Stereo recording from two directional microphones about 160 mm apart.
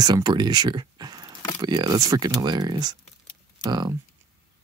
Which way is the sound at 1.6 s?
25° right (ahead or behind).